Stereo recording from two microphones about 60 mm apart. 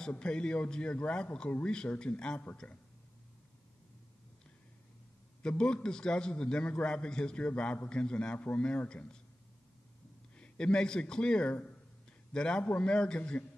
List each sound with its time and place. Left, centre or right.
0.1 s a man's voice: centre
5.4 s a man's voice: centre
10.3 s a man's voice: centre